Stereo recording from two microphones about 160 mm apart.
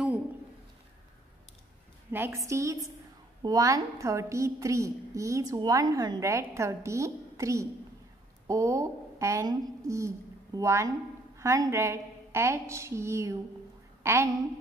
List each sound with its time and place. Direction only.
2.0 s a woman's voice: 15° right (ahead or behind)